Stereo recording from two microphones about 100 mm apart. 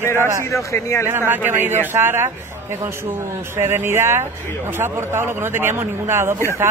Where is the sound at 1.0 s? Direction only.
20° right (ahead or behind).